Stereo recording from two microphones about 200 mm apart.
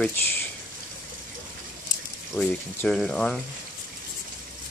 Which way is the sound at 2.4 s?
5° left (ahead or behind).